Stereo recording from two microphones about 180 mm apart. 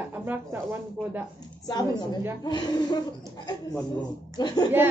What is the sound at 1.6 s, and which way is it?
Speech, 20° left (ahead or behind).